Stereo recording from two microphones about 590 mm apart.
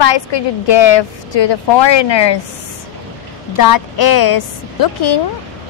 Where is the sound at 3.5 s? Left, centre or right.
Left.